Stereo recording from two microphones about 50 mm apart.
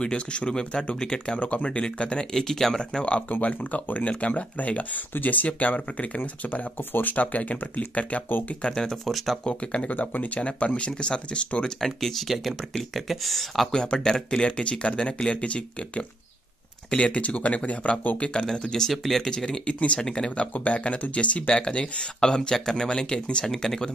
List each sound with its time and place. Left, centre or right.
0.0 s speech: centre
1.4 s speech: left
1.7 s speech: centre
2.8 s speech: centre
8.7 s speech: centre
9.4 s speech: left
9.9 s speech: left
11.8 s speech: centre
13.7 s speech: centre